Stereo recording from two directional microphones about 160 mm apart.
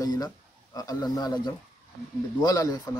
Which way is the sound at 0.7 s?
25° left (ahead or behind).